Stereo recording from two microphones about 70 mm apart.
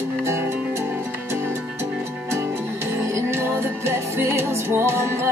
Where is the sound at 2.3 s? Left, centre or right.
Right.